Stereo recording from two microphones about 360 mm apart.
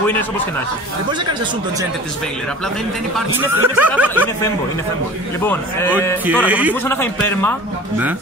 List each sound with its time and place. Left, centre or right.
3.3 s speech: centre
5.4 s speech: centre
6.2 s speech: centre
6.9 s a man's voice: centre